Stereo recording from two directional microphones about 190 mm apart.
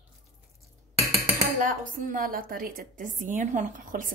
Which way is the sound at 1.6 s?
45° right (ahead or behind).